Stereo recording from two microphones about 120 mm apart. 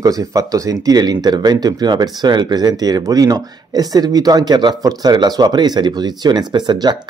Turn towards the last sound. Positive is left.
turn(degrees=-35)  # may be behind; listen again after turning